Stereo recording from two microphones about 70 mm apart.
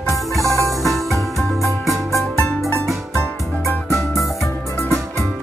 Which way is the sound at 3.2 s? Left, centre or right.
Left.